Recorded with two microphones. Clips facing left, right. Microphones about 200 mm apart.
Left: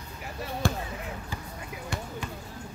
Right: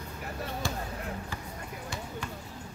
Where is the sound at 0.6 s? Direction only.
55° left (ahead or behind).